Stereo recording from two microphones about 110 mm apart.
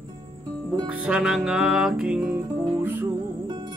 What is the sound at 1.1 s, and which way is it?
Music, 5° right (ahead or behind).